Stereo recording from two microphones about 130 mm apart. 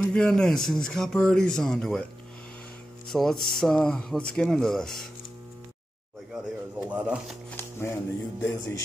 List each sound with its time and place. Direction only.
0.0 s a man's voice: 5° left (ahead or behind)
3.1 s a man's voice: 5° left (ahead or behind)
6.3 s speech: 10° right (ahead or behind)
7.5 s speech: 15° left (ahead or behind)